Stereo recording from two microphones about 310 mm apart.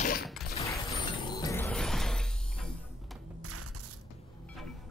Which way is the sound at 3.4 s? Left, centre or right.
Right.